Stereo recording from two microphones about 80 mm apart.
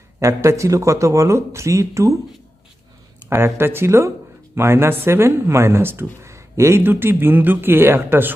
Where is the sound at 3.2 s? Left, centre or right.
Right.